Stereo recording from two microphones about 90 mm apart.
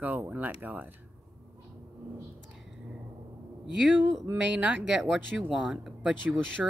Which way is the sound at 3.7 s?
Centre (ahead or behind).